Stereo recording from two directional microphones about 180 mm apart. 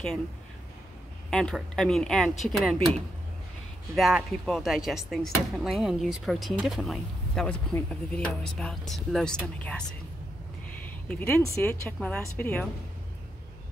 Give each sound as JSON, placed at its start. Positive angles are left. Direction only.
{"t": 1.3, "sound": "speech", "side_deg": 5}